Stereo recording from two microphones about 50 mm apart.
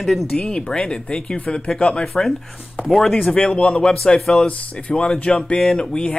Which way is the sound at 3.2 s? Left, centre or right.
Centre.